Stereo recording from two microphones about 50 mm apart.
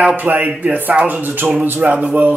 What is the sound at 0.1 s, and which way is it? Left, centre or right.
Speech, right.